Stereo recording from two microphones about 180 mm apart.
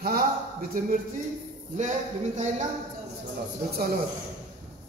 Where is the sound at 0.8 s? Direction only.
50° right (ahead or behind).